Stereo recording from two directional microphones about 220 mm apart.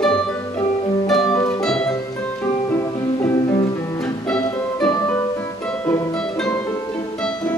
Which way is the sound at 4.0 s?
5° left (ahead or behind).